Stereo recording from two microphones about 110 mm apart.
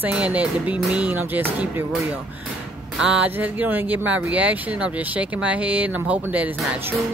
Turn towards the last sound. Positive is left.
turn(degrees=-15)  # may be behind; listen again after turning